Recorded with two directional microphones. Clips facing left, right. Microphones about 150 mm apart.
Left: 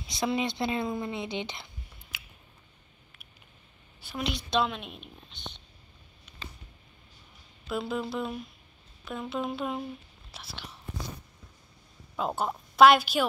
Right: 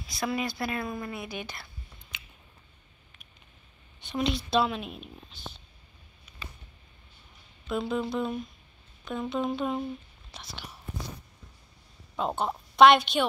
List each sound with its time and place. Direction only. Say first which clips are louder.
0.2 s speech: left 2 dB; 25° left (ahead or behind)
2.1 s a sound: even; 5° left (ahead or behind)
4.0 s speech: right 5 dB; centre (ahead or behind)
7.6 s speech: right 2 dB; centre (ahead or behind)
12.2 s speech: right 1 dB; centre (ahead or behind)